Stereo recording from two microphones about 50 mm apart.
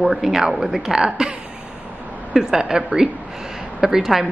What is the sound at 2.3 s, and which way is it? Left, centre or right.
Speech, centre.